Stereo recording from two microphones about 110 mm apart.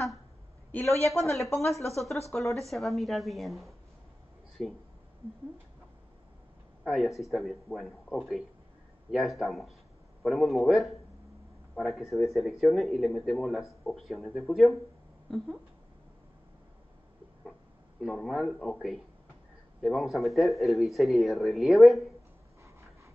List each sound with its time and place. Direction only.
0.7 s a woman's voice: 15° left (ahead or behind)
1.3 s speech: centre (ahead or behind)
6.8 s speech: centre (ahead or behind)
18.0 s speech: centre (ahead or behind)